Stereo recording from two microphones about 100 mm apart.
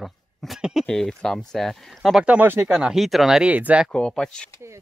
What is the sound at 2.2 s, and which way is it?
Speech, 15° right (ahead or behind).